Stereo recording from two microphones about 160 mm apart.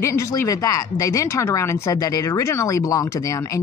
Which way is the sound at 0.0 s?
20° left (ahead or behind).